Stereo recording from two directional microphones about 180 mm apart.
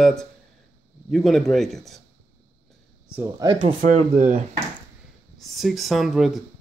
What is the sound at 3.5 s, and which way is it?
Speech, 30° right (ahead or behind).